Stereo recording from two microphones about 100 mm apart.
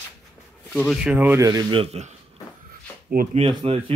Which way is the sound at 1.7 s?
80° right.